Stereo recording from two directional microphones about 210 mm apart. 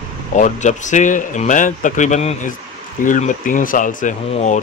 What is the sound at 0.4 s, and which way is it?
Speech, 35° left (ahead or behind).